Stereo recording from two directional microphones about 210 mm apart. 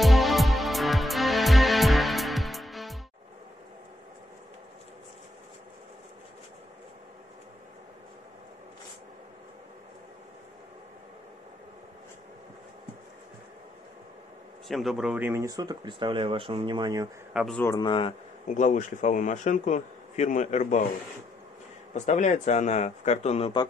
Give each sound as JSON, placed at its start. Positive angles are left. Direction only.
{"t": 0.0, "sound": "music", "side_deg": 0}
{"t": 14.7, "sound": "speech", "side_deg": 0}
{"t": 17.3, "sound": "a man's voice", "side_deg": -5}
{"t": 17.6, "sound": "speech", "side_deg": 15}
{"t": 18.5, "sound": "a man's voice", "side_deg": 35}
{"t": 21.9, "sound": "a man's voice", "side_deg": 35}